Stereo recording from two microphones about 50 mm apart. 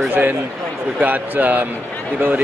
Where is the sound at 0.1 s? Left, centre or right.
Right.